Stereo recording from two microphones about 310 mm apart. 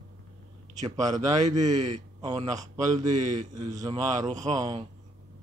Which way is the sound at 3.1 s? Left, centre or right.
Right.